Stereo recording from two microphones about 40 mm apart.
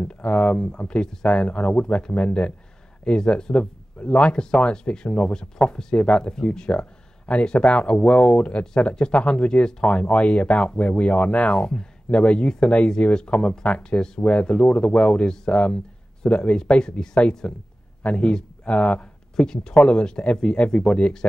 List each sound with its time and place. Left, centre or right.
0.1 s speech: left
6.7 s a sound: left
7.5 s speech: left
13.8 s speech: centre
19.3 s speech: centre